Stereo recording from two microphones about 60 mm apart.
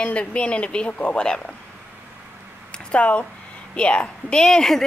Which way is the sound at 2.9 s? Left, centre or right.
Left.